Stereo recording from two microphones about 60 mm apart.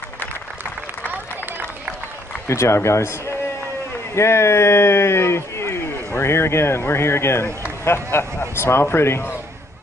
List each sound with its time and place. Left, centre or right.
1.0 s run: right
2.4 s speech: left